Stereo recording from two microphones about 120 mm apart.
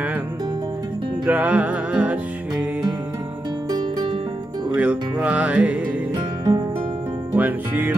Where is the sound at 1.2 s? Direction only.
10° right (ahead or behind).